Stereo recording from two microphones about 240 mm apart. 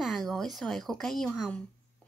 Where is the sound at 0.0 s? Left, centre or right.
Centre.